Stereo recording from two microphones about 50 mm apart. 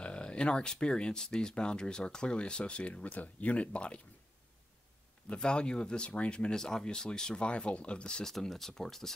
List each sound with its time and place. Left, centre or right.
0.0 s speech: left
5.3 s speech: centre
8.3 s speech: centre